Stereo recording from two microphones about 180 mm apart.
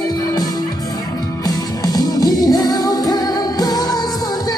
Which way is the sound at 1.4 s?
20° left (ahead or behind).